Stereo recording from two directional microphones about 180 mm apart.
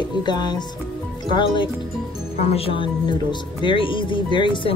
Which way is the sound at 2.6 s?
30° left (ahead or behind).